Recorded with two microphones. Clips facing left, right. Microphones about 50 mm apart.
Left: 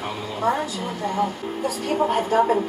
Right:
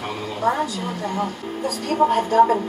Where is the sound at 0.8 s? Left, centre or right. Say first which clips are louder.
Left 1 dB; centre.